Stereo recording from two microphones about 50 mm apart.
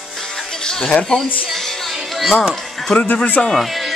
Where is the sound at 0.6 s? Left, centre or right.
Centre.